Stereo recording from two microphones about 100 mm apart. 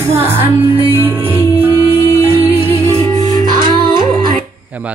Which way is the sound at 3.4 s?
50° right (ahead or behind).